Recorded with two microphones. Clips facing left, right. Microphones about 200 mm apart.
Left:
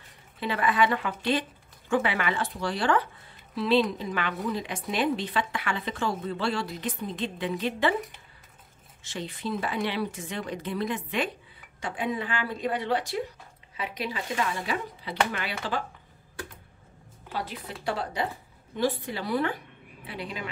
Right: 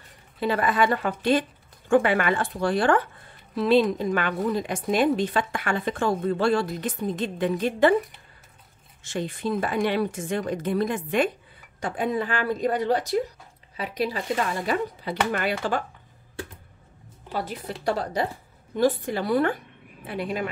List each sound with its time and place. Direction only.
0.4 s a woman's voice: 40° right (ahead or behind)
9.0 s a woman's voice: 50° right (ahead or behind)
17.3 s a woman's voice: 45° right (ahead or behind)